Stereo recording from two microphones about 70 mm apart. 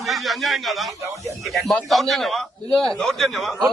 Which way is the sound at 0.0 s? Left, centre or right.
Centre.